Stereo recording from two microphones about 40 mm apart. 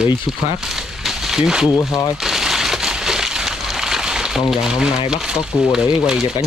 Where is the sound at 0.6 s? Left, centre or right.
Centre.